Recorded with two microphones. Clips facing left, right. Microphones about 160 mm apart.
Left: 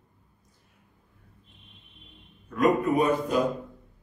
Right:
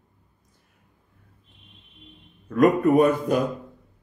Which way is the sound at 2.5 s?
60° right (ahead or behind).